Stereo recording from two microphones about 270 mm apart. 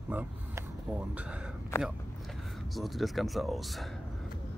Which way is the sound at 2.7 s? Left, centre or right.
Centre.